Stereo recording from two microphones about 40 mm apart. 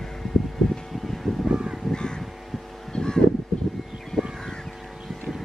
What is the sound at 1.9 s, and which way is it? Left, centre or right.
Crow, centre.